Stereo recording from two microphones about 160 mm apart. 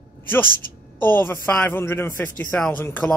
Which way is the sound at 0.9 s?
10° left (ahead or behind).